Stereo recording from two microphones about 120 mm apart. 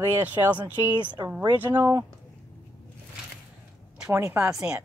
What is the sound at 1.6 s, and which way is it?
Speech, 15° right (ahead or behind).